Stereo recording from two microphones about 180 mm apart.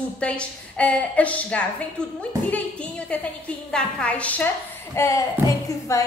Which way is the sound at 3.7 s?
5° left (ahead or behind).